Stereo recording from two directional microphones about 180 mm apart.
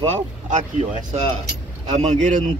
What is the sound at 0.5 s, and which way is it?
Speech, 45° right (ahead or behind).